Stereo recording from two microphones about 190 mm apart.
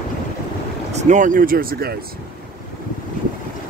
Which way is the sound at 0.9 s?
40° right (ahead or behind).